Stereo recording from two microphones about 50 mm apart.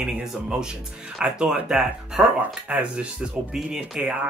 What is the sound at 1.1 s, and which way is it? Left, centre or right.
Speech, centre.